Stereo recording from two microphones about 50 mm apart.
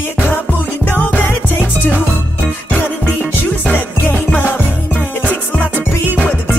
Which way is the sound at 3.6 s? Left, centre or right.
Left.